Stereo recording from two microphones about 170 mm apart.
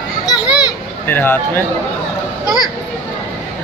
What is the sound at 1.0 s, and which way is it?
Speech, 10° left (ahead or behind).